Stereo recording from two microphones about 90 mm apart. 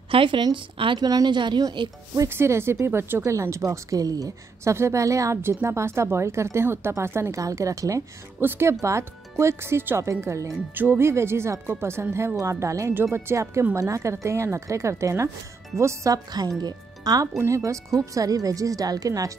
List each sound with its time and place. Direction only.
0.1 s a woman's voice: 70° right (ahead or behind)
1.6 s speech: 45° right (ahead or behind)
2.2 s a woman's voice: 30° right (ahead or behind)
8.4 s a woman's voice: 25° right (ahead or behind)
10.7 s a woman's voice: 25° right (ahead or behind); by 17.3 s 45° right (ahead or behind)
17.4 s a woman's voice: 35° right (ahead or behind)